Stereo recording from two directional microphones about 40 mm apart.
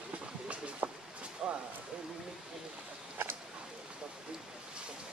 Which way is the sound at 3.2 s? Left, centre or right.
Right.